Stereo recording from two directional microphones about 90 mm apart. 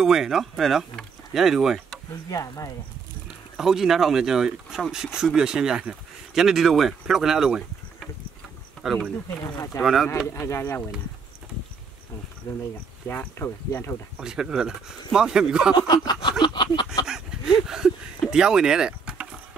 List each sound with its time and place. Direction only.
0.0 s speech: 5° right (ahead or behind)
2.2 s speech: 40° left (ahead or behind)
3.5 s speech: 5° right (ahead or behind)
8.8 s speech: centre (ahead or behind)
10.4 s speech: 30° left (ahead or behind)
13.0 s speech: 20° left (ahead or behind)
14.2 s speech: 5° right (ahead or behind)
15.7 s a sound: 50° left (ahead or behind)
17.0 s a sound: 5° right (ahead or behind)
18.3 s speech: 10° right (ahead or behind)